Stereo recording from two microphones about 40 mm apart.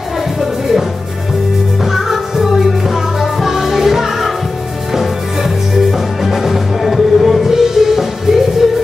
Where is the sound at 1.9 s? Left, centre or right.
Centre.